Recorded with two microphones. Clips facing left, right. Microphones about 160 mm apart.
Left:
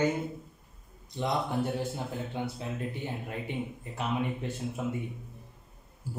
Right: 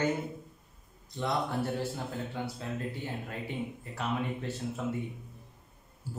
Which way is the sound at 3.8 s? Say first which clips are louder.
Left 2 dB; 15° left (ahead or behind).